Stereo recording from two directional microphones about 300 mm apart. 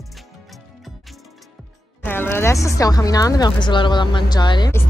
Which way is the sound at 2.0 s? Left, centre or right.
Centre.